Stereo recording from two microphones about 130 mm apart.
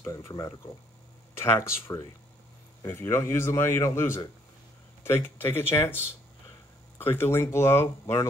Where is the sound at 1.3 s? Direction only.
20° left (ahead or behind).